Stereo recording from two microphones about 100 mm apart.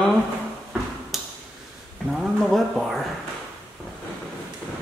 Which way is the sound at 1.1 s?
Centre (ahead or behind).